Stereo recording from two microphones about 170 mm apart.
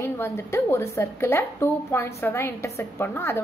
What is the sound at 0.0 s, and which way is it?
A woman's voice, 15° left (ahead or behind).